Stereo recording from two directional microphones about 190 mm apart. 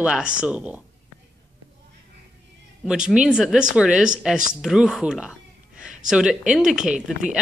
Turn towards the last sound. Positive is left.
turn(degrees=-5)  # may be behind; listen again after turning